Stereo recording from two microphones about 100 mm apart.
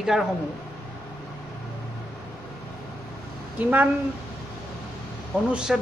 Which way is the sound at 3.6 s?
15° right (ahead or behind).